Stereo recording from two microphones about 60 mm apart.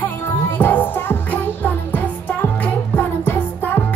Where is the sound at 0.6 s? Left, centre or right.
Left.